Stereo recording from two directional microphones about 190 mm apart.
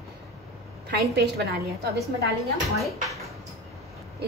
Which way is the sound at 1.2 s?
55° right (ahead or behind).